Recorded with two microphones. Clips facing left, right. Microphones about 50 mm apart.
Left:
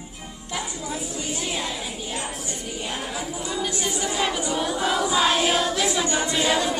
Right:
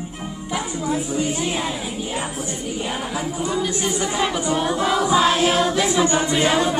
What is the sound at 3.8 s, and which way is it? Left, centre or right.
Speech, centre.